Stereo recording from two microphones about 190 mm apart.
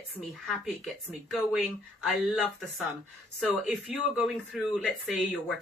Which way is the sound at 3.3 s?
Centre (ahead or behind).